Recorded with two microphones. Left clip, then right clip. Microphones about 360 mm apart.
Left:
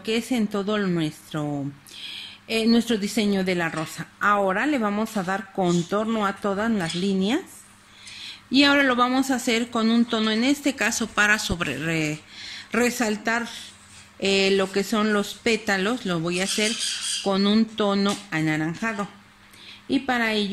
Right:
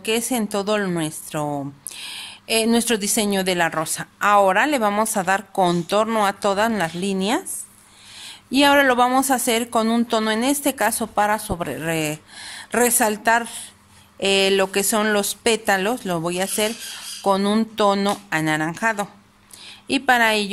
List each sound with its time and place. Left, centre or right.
0.0 s a woman's voice: right